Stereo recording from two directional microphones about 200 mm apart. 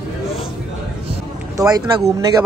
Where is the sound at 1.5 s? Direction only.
20° right (ahead or behind).